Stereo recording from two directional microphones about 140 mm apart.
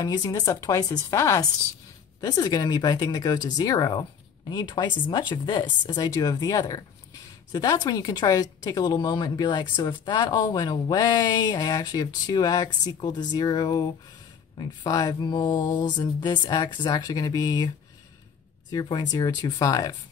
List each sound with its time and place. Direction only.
0.0 s speech: 30° left (ahead or behind)
18.7 s speech: 30° left (ahead or behind)